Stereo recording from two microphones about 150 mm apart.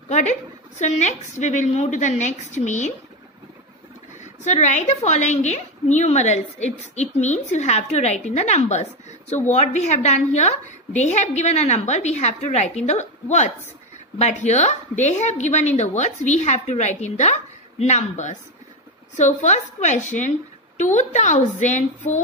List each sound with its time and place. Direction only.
0.1 s a woman's voice: 50° left (ahead or behind)
4.5 s a woman's voice: 50° left (ahead or behind)